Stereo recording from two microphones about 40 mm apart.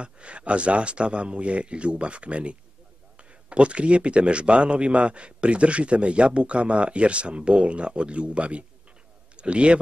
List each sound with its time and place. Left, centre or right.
0.0 s a man's voice: right